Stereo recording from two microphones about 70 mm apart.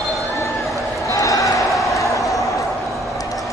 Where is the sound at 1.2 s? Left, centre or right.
Left.